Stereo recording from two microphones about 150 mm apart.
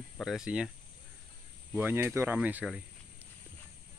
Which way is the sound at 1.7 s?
15° right (ahead or behind).